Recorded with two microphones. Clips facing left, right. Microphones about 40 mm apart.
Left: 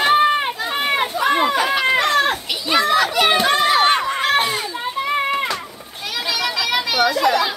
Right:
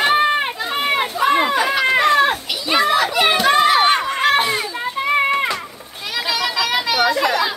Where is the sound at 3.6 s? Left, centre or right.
Centre.